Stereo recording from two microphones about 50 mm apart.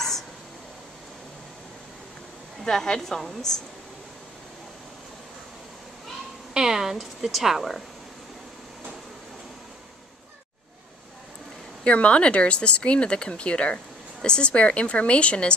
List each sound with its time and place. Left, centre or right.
2.6 s a woman's voice: centre
6.5 s speech: centre
11.8 s speech: left